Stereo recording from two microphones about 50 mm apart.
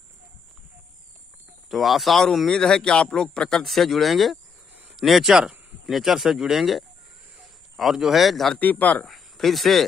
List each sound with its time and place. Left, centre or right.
1.7 s speech: centre
3.6 s a man's voice: centre
8.5 s speech: left
9.0 s speech: centre